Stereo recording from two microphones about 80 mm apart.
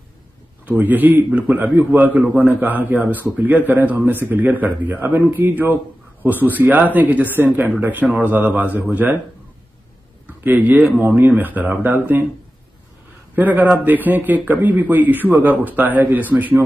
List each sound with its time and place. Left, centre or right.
0.7 s a man's voice: right
10.4 s a man's voice: right
13.4 s a man's voice: right